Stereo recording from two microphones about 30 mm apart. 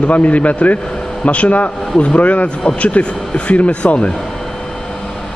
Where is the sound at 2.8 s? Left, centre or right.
Left.